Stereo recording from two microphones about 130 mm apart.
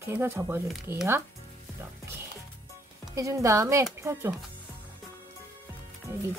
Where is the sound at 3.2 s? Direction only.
25° right (ahead or behind).